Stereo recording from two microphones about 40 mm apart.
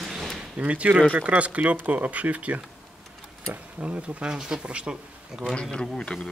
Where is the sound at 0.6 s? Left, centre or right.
Right.